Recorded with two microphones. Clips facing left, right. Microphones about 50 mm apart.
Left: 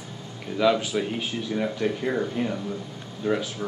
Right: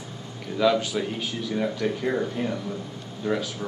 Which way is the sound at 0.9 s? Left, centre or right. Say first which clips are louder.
Left 1 dB; left.